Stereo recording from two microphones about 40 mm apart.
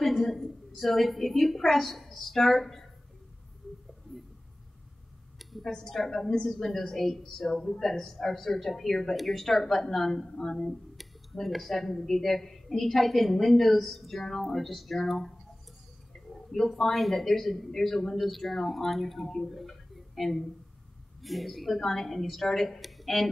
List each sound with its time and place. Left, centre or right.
0.0 s a sound: centre
1.6 s speech: centre
5.6 s a woman's voice: centre
10.3 s a woman's voice: centre
10.6 s speech: centre
16.5 s speech: centre